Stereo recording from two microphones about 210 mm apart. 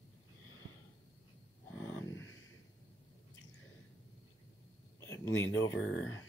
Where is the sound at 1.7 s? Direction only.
10° left (ahead or behind).